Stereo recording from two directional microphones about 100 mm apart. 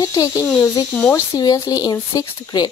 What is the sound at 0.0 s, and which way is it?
A woman's voice, 35° left (ahead or behind).